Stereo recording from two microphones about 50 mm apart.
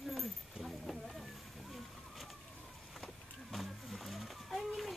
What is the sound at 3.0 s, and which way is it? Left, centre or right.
Vehicle, centre.